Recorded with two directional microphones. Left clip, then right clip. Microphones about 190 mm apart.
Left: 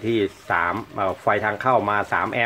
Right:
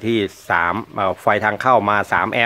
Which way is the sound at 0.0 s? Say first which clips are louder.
Right 2 dB; 50° right (ahead or behind).